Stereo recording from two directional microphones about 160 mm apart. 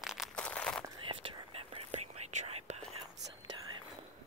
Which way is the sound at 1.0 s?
35° right (ahead or behind).